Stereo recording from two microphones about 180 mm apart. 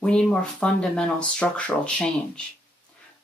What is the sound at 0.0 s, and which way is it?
Speech, 5° left (ahead or behind).